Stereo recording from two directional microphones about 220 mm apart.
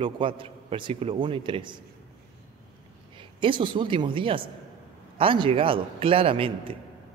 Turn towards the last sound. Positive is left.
turn(degrees=-25)  # may be behind; listen again after turning